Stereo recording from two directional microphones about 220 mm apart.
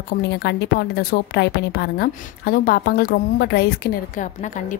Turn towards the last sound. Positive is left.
turn(degrees=50)  # may be behind; listen again after turning